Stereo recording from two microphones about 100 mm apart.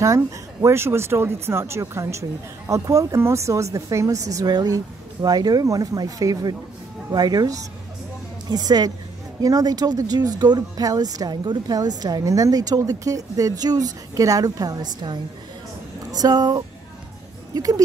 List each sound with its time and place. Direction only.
0.0 s a woman's voice: 30° right (ahead or behind)